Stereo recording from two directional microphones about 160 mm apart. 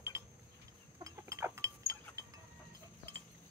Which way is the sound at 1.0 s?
20° right (ahead or behind).